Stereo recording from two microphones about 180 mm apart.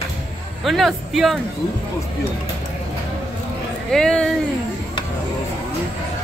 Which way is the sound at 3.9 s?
5° left (ahead or behind).